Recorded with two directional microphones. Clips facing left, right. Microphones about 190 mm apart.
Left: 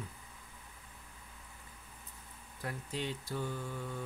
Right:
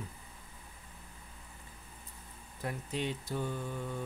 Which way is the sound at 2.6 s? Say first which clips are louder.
Right 3 dB; 20° right (ahead or behind).